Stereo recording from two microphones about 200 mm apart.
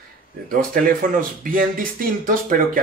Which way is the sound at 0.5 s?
45° right (ahead or behind).